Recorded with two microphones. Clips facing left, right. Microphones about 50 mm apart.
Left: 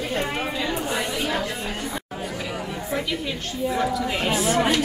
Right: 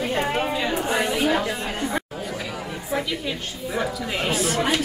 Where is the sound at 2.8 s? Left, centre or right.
Centre.